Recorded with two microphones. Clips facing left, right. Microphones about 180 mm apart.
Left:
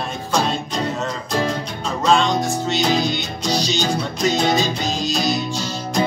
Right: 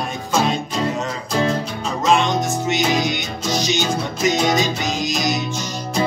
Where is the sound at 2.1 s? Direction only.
20° right (ahead or behind).